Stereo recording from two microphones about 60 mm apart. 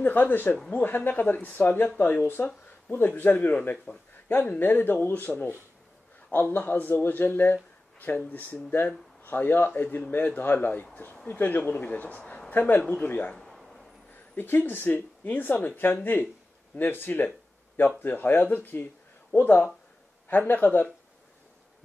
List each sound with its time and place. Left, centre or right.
0.0 s speech: left
3.7 s speech: centre
4.3 s speech: left
13.3 s a sound: centre
14.3 s speech: left